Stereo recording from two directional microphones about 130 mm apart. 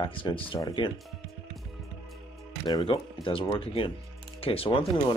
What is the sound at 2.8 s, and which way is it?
Speech, 45° left (ahead or behind).